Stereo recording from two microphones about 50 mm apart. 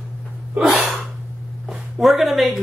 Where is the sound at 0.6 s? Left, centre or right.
Centre.